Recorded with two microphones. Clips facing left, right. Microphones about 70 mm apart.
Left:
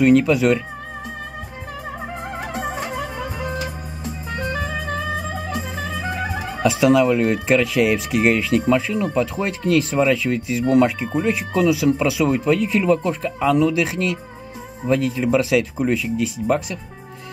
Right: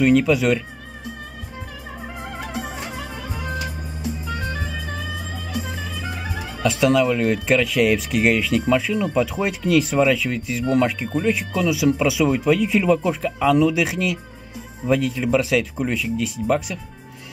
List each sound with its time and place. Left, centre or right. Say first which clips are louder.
0.0 s speech: left 2 dB; centre
2.5 s music: left 5 dB; left
4.5 s music: left 4 dB; left
6.6 s speech: left 2 dB; centre